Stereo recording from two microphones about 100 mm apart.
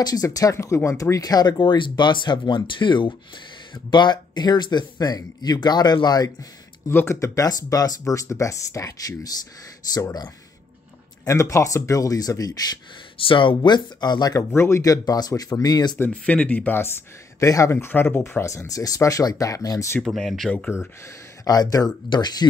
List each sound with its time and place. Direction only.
0.0 s speech: 40° left (ahead or behind)
6.9 s speech: 25° left (ahead or behind); by 12.7 s 40° left (ahead or behind)
13.2 s speech: 60° left (ahead or behind)
13.6 s speech: 45° left (ahead or behind)
14.5 s speech: 25° left (ahead or behind); by 16.0 s 45° left (ahead or behind)
16.0 s speech: 15° left (ahead or behind)
17.4 s speech: 30° left (ahead or behind)
20.0 s speech: centre (ahead or behind)
21.5 s speech: 40° left (ahead or behind)